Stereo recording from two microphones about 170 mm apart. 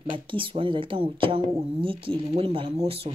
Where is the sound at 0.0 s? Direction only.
30° right (ahead or behind).